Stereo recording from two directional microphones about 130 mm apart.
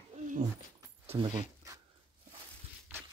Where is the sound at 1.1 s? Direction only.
30° right (ahead or behind).